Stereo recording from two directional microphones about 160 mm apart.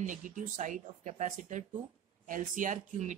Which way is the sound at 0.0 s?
55° right (ahead or behind).